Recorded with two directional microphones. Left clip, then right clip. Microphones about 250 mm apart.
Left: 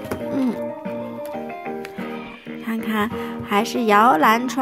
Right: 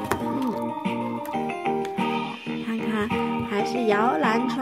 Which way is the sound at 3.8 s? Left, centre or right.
Left.